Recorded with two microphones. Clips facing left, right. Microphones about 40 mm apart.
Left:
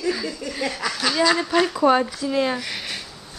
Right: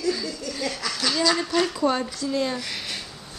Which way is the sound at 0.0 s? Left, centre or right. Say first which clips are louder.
Left 2 dB; left.